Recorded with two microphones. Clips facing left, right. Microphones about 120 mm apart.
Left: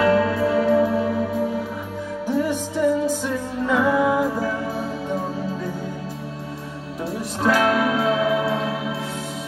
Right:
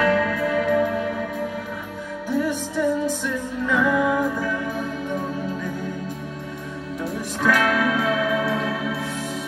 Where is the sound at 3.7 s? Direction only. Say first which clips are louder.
Left 2 dB; 35° left (ahead or behind).